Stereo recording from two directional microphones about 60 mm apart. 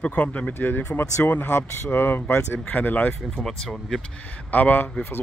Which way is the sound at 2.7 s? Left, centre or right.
Left.